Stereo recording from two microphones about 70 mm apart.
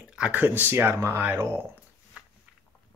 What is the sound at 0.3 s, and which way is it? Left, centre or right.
Speech, right.